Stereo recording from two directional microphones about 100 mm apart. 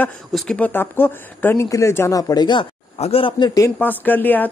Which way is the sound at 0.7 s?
20° left (ahead or behind).